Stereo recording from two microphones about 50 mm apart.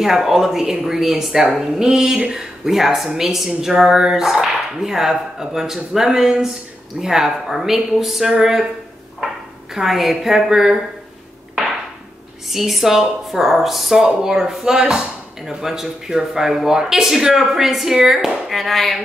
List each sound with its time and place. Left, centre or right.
0.0 s speech: centre
9.8 s speech: centre
12.4 s speech: centre
18.5 s speech: centre